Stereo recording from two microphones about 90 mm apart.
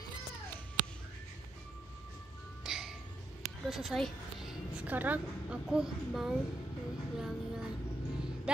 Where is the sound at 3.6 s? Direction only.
5° right (ahead or behind).